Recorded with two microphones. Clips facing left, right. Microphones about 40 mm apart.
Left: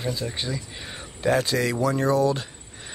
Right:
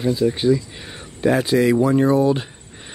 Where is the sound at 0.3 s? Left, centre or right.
Centre.